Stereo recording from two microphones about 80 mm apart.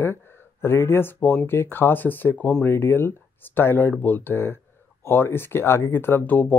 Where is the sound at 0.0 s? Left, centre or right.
Left.